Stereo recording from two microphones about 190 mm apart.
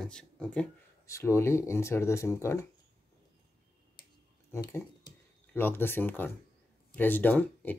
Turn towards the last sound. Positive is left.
turn(degrees=10)  # may be behind; listen again after turning